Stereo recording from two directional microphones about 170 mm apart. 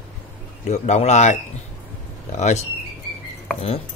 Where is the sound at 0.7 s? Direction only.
40° left (ahead or behind).